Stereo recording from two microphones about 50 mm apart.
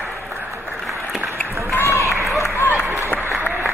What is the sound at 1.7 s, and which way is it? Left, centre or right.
Run, left.